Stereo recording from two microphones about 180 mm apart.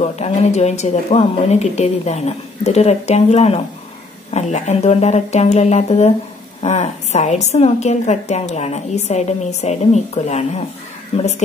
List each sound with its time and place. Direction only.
0.0 s a woman's voice: 35° left (ahead or behind)